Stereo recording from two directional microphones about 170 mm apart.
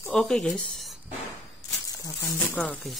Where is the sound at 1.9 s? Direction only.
20° left (ahead or behind); by 3.0 s 5° left (ahead or behind).